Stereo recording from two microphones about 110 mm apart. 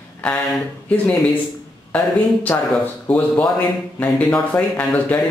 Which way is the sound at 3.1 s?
10° left (ahead or behind).